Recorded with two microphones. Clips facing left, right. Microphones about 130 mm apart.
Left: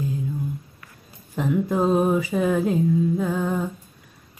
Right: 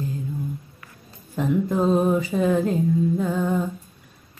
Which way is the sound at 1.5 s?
10° left (ahead or behind).